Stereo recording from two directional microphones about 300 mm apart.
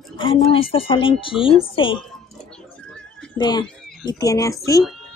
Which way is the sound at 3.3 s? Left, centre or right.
Centre.